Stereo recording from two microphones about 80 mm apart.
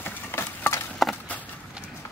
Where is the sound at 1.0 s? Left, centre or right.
Centre.